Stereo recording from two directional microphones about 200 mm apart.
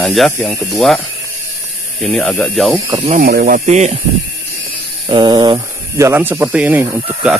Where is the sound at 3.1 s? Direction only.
45° right (ahead or behind).